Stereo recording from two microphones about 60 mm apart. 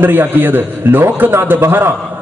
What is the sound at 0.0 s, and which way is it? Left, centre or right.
A man's voice, right.